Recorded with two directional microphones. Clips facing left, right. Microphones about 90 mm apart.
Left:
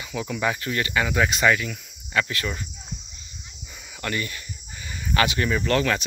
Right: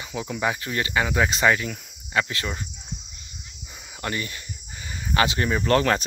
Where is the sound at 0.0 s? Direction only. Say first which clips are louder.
Even; 25° right (ahead or behind).